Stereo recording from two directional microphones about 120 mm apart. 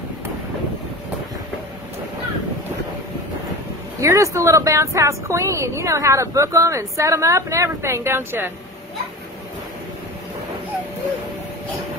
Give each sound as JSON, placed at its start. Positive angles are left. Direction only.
{"t": 4.0, "sound": "a woman's voice", "side_deg": -25}